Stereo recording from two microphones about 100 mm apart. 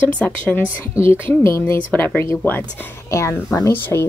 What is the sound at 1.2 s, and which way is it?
A woman's voice, 25° left (ahead or behind).